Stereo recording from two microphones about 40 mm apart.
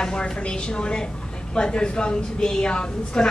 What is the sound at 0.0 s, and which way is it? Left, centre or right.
A woman's voice, left.